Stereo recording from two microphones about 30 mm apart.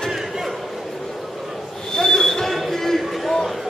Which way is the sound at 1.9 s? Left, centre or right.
Centre.